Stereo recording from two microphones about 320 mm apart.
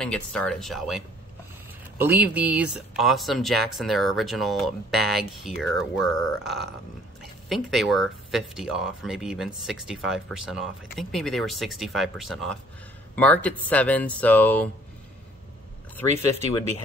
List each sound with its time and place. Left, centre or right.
0.0 s speech: centre